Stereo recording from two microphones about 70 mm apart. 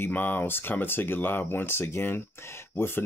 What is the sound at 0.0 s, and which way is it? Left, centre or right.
Speech, left.